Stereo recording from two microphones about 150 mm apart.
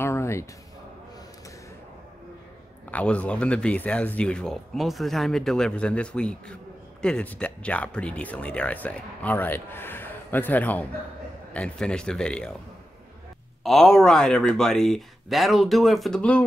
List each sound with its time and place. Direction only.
0.0 s a sound: 20° left (ahead or behind)
2.9 s speech: 10° left (ahead or behind)
13.7 s speech: centre (ahead or behind)